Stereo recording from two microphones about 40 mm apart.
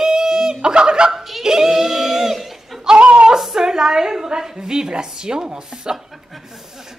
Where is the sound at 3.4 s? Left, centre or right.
Centre.